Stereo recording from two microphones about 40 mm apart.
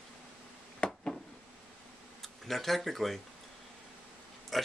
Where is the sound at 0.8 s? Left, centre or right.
Left.